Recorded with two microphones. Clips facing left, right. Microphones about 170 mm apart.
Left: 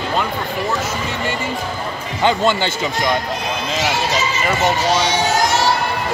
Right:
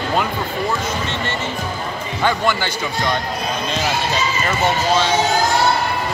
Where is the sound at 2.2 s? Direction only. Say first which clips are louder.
Left 3 dB; 25° left (ahead or behind).